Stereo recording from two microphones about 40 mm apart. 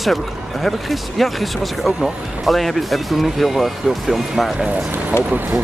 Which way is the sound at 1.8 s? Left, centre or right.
Centre.